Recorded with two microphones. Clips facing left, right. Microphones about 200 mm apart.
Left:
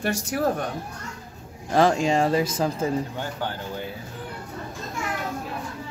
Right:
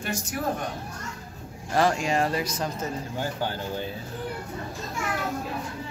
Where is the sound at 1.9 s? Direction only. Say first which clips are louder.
Left 4 dB; 30° left (ahead or behind).